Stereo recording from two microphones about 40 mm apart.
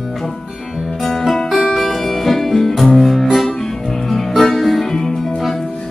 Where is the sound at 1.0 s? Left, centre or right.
Centre.